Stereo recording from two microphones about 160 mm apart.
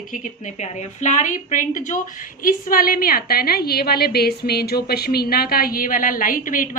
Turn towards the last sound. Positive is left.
turn(degrees=60)  # may be behind; listen again after turning